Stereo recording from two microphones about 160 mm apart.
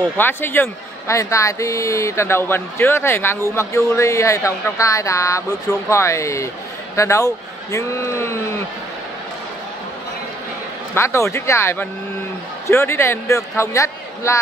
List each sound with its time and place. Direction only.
0.2 s speech: 15° left (ahead or behind)
11.0 s speech: 15° left (ahead or behind)